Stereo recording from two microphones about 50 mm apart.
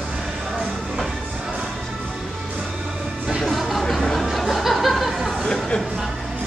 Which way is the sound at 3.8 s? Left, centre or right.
Centre.